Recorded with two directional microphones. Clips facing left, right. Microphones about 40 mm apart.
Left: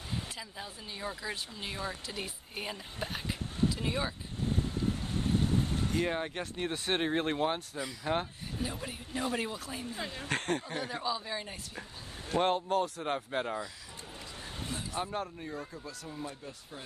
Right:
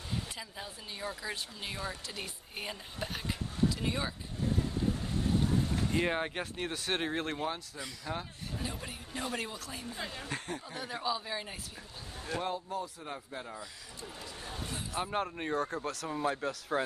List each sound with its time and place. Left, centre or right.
0.1 s speech: centre
5.9 s speech: centre
6.7 s speech: centre; by 8.2 s left
8.5 s speech: centre
10.2 s speech: left
10.8 s speech: centre
12.4 s speech: left
14.7 s speech: centre
15.0 s speech: right
15.3 s speech: right